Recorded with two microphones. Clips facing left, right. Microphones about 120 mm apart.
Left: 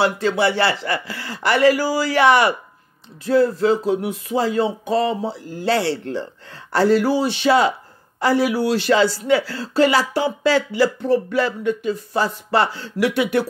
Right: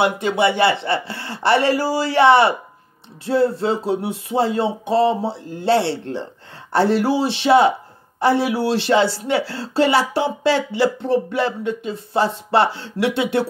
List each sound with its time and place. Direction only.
0.0 s speech: 20° right (ahead or behind)